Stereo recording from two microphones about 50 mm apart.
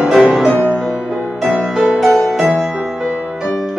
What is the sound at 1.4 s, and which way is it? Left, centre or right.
Music, centre.